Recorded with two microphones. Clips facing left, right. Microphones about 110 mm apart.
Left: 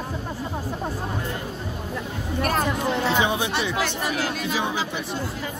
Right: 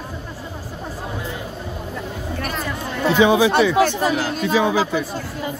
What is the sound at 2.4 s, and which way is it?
Music, 45° left (ahead or behind).